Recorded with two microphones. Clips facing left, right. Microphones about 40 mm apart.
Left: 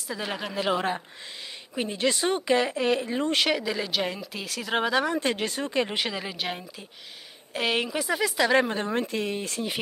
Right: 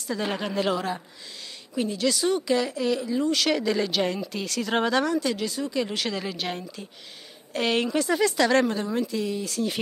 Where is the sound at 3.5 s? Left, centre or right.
Centre.